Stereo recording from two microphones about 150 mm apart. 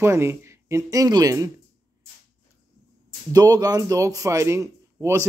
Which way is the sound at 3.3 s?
25° right (ahead or behind).